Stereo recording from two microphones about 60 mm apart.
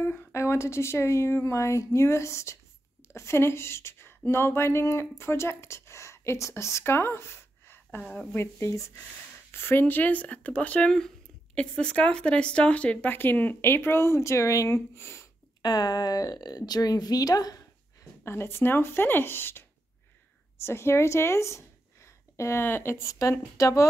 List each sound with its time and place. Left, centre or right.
0.0 s a woman's voice: left
8.4 s speech: left
9.5 s speech: left
15.0 s speech: left
15.6 s a woman's voice: left
18.2 s speech: left
20.6 s a woman's voice: left
23.6 s speech: left